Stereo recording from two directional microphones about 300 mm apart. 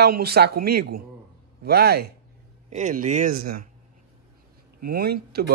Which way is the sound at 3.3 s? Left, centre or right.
Right.